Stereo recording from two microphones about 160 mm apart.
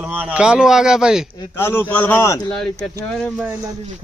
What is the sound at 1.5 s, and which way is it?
A man's voice, 15° left (ahead or behind).